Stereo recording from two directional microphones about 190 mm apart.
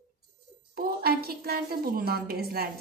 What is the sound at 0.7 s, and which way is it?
A woman's voice, 55° right (ahead or behind).